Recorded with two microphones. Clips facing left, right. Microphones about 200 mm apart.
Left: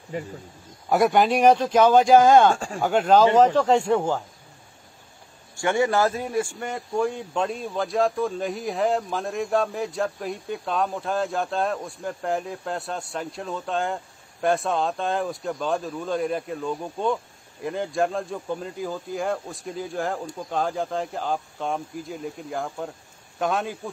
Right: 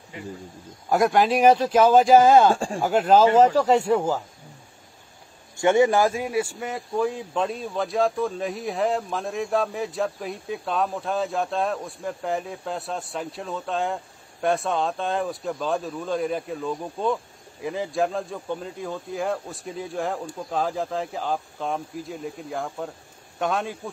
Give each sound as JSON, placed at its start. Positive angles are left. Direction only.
{"t": 0.1, "sound": "speech", "side_deg": 40}
{"t": 0.8, "sound": "a man's voice", "side_deg": 0}
{"t": 2.5, "sound": "speech", "side_deg": -30}
{"t": 2.8, "sound": "a man's voice", "side_deg": -5}
{"t": 5.6, "sound": "a man's voice", "side_deg": -20}